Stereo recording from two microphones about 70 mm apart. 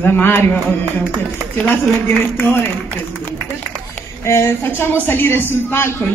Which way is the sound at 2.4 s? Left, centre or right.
Left.